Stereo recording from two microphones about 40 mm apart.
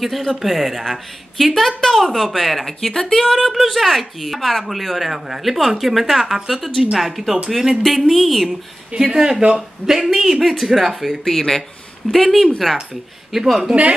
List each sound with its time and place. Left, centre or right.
0.0 s speech: centre
1.5 s speech: centre
7.8 s speech: centre
8.5 s speech: centre
11.2 s speech: centre